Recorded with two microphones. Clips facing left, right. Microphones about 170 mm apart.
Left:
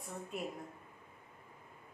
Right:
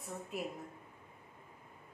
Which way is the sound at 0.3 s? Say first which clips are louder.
Right 1 dB; 5° right (ahead or behind).